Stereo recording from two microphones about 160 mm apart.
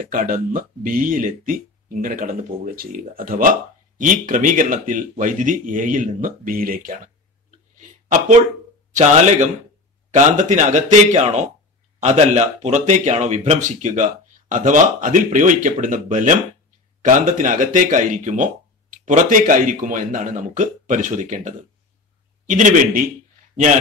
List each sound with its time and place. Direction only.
0.1 s speech: 60° right (ahead or behind)
7.7 s a sound: 55° right (ahead or behind)
8.9 s speech: 45° right (ahead or behind)